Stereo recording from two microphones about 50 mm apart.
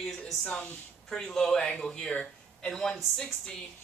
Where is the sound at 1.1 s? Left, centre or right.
Centre.